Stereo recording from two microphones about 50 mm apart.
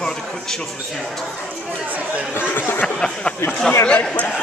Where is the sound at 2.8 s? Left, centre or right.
Centre.